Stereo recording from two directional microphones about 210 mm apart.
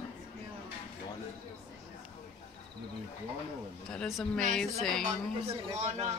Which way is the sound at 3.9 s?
Centre (ahead or behind).